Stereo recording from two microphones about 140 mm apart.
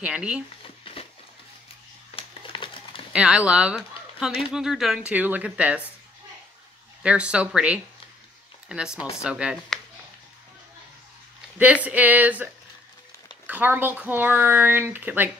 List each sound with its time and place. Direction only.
0.0 s speech: 5° right (ahead or behind)
0.9 s a sound: 40° left (ahead or behind)
2.1 s crumpling: 40° left (ahead or behind)
3.1 s speech: 5° right (ahead or behind)
7.0 s speech: 10° right (ahead or behind)
11.5 s speech: 10° right (ahead or behind)
13.5 s speech: 10° right (ahead or behind)